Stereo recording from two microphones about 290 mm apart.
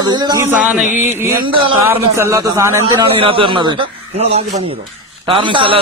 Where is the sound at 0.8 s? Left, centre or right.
Left.